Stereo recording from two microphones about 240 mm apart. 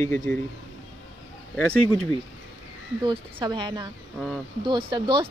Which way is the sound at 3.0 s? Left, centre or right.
Centre.